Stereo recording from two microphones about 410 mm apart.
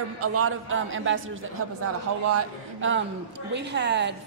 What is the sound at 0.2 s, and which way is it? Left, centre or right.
A woman's voice, right.